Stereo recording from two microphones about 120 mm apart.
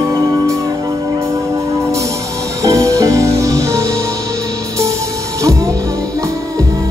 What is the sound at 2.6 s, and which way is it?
Music, 25° right (ahead or behind).